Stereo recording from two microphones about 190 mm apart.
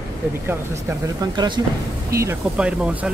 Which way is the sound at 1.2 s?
20° right (ahead or behind).